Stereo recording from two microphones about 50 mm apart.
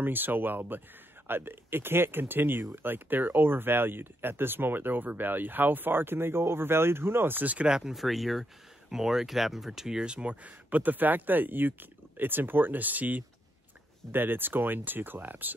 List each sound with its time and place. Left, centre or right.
0.0 s speech: right
7.6 s speech: centre
7.9 s speech: centre; by 15.5 s right